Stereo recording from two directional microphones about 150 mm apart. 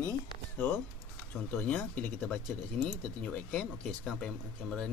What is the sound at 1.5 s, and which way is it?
Speech, 10° left (ahead or behind).